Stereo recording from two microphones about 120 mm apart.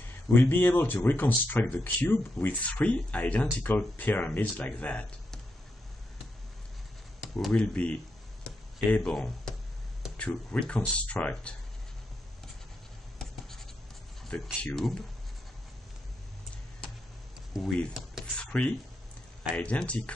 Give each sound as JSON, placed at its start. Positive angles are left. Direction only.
{"t": 0.3, "sound": "speech", "side_deg": 15}
{"t": 7.4, "sound": "speech", "side_deg": 10}
{"t": 8.5, "sound": "a sound", "side_deg": 5}
{"t": 10.1, "sound": "speech", "side_deg": 10}
{"t": 14.2, "sound": "speech", "side_deg": 10}
{"t": 17.5, "sound": "speech", "side_deg": 5}
{"t": 18.2, "sound": "a sound", "side_deg": 10}
{"t": 19.5, "sound": "speech", "side_deg": 10}